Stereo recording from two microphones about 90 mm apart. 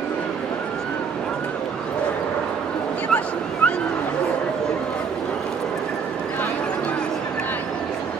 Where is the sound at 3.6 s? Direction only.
15° left (ahead or behind).